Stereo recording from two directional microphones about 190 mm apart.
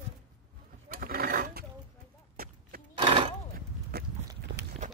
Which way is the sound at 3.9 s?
55° right (ahead or behind).